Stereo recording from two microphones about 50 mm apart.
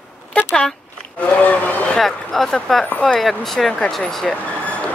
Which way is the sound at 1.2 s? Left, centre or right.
Left.